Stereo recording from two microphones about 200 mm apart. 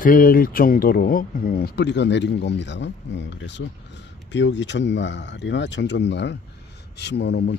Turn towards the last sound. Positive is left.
turn(degrees=55)  # may be behind; listen again after turning